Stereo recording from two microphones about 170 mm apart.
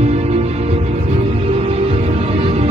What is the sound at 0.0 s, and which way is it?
Music, 40° right (ahead or behind).